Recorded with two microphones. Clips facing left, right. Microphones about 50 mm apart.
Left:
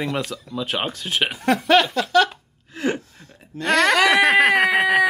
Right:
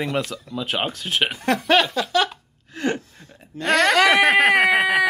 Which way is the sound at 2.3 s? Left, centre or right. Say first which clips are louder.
Even; centre.